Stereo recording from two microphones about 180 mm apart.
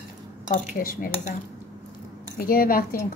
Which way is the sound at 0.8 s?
50° left (ahead or behind).